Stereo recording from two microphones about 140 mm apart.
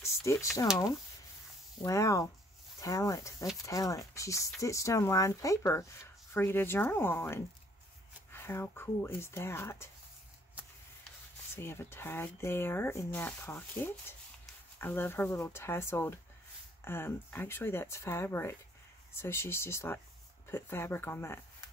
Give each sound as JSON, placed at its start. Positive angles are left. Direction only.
{"t": 0.0, "sound": "a sound", "side_deg": 20}
{"t": 1.8, "sound": "speech", "side_deg": 20}
{"t": 11.5, "sound": "speech", "side_deg": 15}